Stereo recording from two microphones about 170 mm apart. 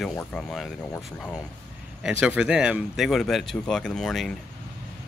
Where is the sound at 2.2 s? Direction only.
5° right (ahead or behind).